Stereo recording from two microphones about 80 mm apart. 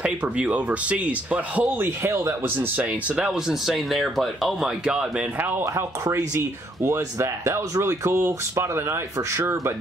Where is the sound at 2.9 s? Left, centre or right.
Centre.